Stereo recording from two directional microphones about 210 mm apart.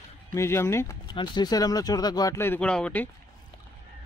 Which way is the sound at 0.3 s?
15° left (ahead or behind).